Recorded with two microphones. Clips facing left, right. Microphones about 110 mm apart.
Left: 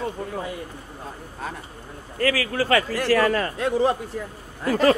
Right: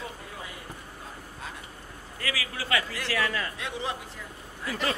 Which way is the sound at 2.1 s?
50° left (ahead or behind).